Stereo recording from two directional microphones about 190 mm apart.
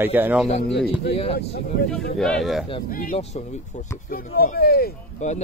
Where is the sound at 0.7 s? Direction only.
5° right (ahead or behind).